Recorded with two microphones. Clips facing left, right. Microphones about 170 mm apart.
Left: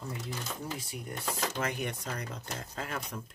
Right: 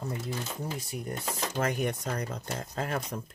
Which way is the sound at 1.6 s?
45° right (ahead or behind).